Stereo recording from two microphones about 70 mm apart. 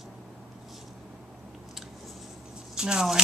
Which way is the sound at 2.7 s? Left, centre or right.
Centre.